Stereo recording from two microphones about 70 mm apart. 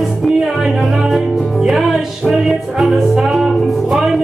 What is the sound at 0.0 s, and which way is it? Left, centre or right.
Music, centre.